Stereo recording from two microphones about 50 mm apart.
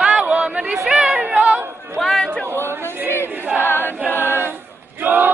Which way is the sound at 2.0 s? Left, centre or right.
Centre.